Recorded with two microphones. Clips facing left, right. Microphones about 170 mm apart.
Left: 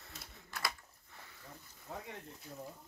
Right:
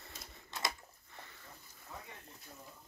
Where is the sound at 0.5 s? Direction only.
20° right (ahead or behind).